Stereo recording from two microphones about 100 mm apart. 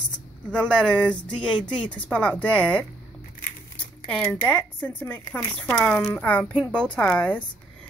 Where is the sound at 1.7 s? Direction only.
55° left (ahead or behind).